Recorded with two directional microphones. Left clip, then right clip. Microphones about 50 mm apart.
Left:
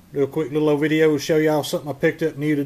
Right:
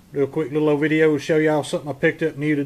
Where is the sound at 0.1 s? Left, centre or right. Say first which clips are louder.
Even; centre.